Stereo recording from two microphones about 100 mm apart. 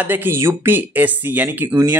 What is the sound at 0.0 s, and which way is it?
Speech, 20° right (ahead or behind).